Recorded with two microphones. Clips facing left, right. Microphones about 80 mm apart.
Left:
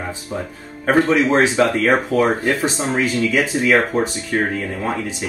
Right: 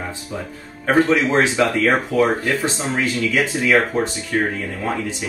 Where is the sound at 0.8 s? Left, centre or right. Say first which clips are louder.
Left 1 dB; centre.